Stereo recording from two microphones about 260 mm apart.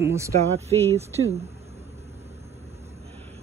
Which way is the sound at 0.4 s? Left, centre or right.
Right.